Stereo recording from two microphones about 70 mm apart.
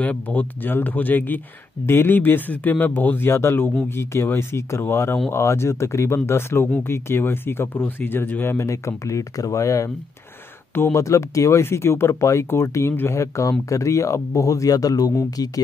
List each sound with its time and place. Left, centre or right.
0.0 s speech: left
13.2 s speech: left